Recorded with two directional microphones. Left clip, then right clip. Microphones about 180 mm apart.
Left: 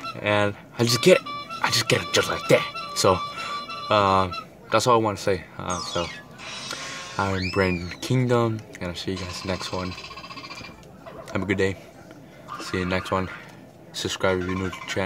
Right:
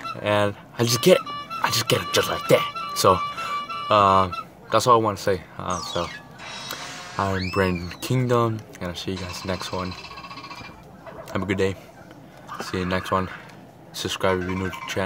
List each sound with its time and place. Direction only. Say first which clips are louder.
0.2 s speech: right 1 dB; 10° left (ahead or behind)
11.2 s speech: even; 5° left (ahead or behind)